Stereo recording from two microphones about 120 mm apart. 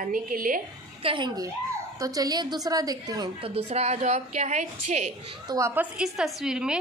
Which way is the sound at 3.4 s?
60° right (ahead or behind).